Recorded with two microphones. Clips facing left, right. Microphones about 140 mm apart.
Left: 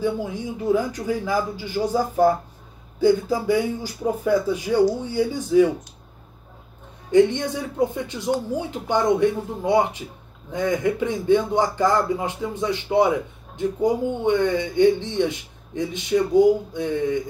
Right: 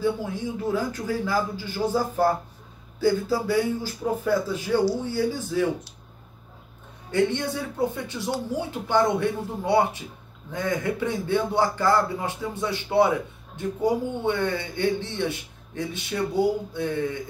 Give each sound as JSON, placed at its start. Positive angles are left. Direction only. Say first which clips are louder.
{"t": 0.0, "sound": "speech", "louder": "left 1 dB", "side_deg": 15}
{"t": 7.1, "sound": "speech", "louder": "left 6 dB", "side_deg": 15}